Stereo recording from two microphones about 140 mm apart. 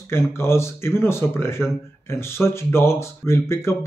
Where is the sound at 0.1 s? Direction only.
20° left (ahead or behind).